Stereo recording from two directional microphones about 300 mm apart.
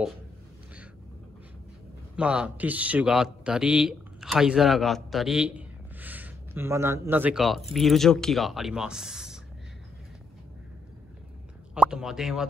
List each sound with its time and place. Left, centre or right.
2.1 s a man's voice: centre
11.7 s speech: centre